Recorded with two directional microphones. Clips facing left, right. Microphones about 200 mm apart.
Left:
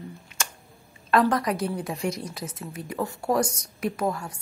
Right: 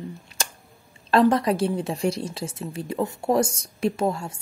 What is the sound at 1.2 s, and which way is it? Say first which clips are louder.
A woman's voice: right 5 dB; 25° right (ahead or behind).